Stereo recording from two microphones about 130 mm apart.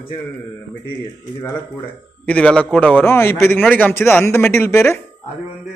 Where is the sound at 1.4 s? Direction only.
10° left (ahead or behind).